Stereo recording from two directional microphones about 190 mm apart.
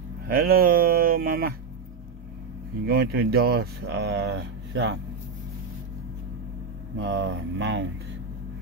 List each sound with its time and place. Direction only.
0.3 s a sound: 50° right (ahead or behind)
2.9 s speech: 55° right (ahead or behind)
7.0 s speech: 75° right (ahead or behind)